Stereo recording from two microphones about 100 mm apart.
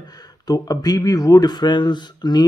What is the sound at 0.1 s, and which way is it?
Speech, 40° left (ahead or behind).